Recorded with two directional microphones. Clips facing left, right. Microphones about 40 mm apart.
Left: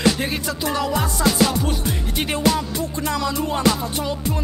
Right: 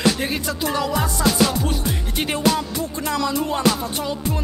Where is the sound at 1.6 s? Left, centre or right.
Centre.